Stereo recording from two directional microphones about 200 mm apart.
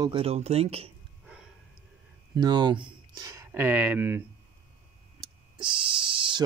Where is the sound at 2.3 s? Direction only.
20° right (ahead or behind).